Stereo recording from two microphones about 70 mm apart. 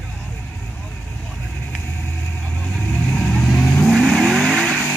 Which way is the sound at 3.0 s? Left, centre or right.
Centre.